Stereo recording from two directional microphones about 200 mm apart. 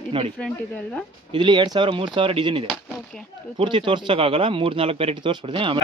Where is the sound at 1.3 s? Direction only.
25° right (ahead or behind).